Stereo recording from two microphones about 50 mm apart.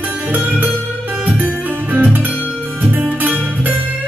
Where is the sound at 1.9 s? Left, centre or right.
Right.